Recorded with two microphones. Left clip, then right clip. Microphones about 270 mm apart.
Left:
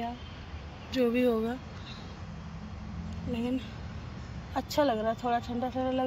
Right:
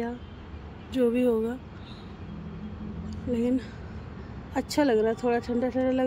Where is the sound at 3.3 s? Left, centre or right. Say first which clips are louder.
Right 6 dB; centre.